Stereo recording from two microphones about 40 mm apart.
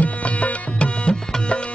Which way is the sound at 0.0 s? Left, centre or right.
Left.